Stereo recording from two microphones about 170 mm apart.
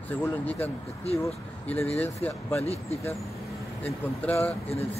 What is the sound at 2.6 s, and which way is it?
Speech, 40° left (ahead or behind).